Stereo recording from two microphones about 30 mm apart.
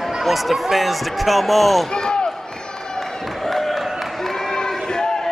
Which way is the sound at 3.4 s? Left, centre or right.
Centre.